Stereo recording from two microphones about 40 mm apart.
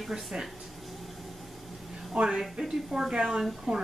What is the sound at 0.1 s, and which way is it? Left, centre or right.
Speech, centre.